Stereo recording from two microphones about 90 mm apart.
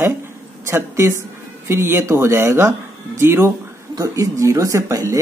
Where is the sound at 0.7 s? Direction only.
30° right (ahead or behind).